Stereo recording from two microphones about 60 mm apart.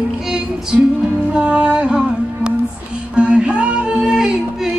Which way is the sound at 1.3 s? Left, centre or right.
Centre.